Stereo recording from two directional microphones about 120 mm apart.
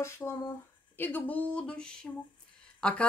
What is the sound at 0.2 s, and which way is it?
Speech, 20° left (ahead or behind).